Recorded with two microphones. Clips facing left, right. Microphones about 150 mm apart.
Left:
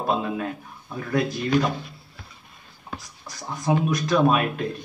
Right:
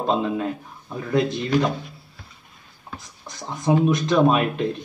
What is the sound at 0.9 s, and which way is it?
Speech, 25° right (ahead or behind).